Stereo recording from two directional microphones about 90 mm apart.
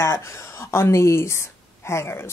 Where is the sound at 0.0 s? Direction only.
30° left (ahead or behind).